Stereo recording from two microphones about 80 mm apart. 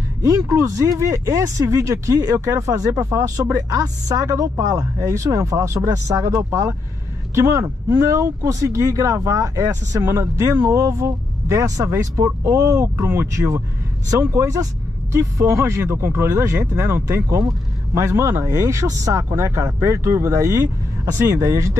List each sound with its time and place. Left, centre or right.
0.5 s speech: right